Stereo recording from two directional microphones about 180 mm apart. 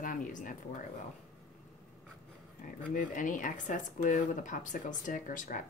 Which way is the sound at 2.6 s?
45° left (ahead or behind).